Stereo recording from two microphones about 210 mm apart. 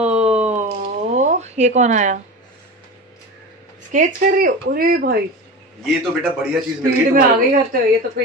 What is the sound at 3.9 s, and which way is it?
Speech, 40° right (ahead or behind).